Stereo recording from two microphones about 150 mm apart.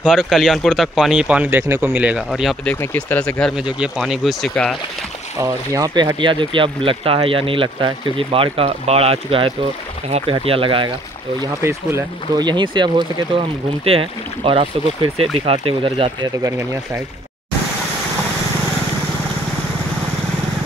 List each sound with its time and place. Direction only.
0.1 s speech: centre (ahead or behind)
2.6 s speech: 15° left (ahead or behind)
3.5 s speech: 5° right (ahead or behind)
5.4 s speech: 25° right (ahead or behind)
12.4 s speech: 30° right (ahead or behind)